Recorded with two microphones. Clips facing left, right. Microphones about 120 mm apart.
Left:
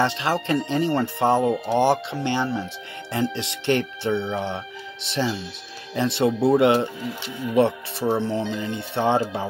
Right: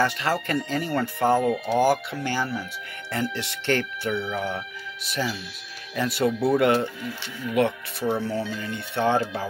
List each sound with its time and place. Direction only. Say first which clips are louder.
0.0 s speech: left 2 dB; 25° left (ahead or behind)